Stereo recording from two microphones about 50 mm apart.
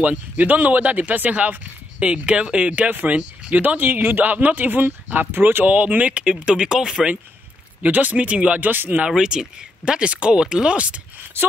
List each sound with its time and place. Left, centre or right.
0.0 s speech: right; by 7.1 s centre
7.8 s speech: right
8.5 s speech: right
9.0 s speech: centre
11.4 s speech: right